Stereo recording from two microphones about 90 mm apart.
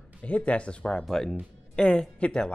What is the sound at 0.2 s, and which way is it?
Speech, 15° left (ahead or behind).